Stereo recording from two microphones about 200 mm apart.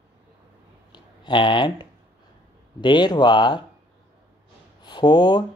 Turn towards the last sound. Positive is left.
turn(degrees=20)  # may be behind; listen again after turning